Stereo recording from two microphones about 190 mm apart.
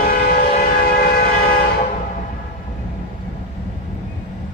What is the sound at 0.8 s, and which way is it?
Civil defense siren, 55° left (ahead or behind).